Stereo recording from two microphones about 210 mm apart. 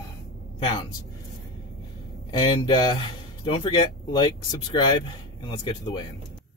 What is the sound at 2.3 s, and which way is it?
Speech, 20° left (ahead or behind).